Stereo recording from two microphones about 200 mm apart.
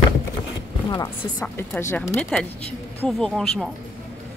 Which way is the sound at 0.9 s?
20° left (ahead or behind).